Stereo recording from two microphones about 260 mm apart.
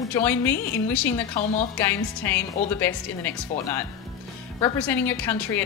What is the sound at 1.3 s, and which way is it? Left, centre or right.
Speech, left.